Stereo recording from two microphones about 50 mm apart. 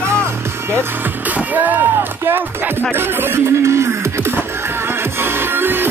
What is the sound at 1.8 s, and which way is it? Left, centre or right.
Music, right.